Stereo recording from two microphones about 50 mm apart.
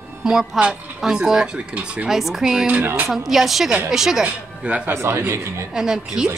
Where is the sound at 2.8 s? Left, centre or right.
Right.